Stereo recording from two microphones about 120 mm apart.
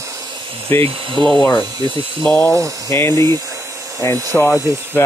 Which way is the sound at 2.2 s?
10° left (ahead or behind).